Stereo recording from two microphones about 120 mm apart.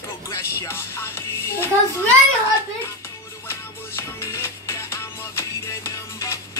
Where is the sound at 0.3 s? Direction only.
20° left (ahead or behind).